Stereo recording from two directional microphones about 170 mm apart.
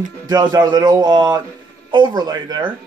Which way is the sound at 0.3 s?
25° right (ahead or behind).